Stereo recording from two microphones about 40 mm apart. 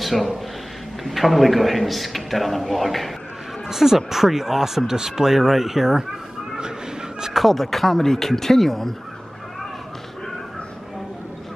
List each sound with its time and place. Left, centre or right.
0.0 s a man's voice: centre
3.6 s speech: centre
6.5 s a sound: centre
7.3 s speech: centre